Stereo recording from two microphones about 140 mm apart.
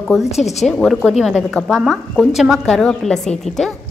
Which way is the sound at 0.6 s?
Centre (ahead or behind).